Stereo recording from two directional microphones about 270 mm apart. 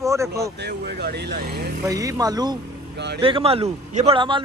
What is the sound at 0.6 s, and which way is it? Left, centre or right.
Speech, right.